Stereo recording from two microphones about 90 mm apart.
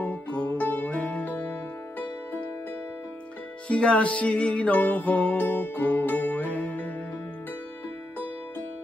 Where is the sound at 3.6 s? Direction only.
15° left (ahead or behind).